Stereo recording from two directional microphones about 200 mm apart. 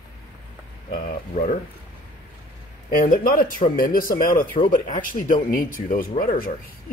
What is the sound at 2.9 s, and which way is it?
Speech, 45° left (ahead or behind).